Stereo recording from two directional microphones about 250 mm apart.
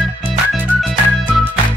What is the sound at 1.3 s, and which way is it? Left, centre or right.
Music, centre.